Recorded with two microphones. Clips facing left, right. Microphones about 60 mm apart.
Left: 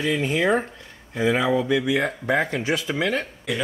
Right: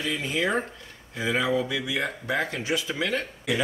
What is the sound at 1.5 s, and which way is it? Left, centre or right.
Speech, left.